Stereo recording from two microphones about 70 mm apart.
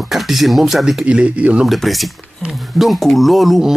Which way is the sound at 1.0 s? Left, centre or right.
Centre.